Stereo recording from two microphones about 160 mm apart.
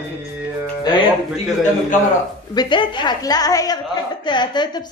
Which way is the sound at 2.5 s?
30° left (ahead or behind).